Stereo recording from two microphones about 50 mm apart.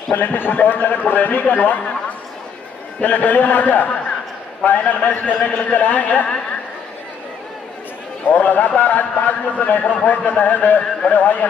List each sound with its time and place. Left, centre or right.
0.1 s a man's voice: left
8.3 s a man's voice: left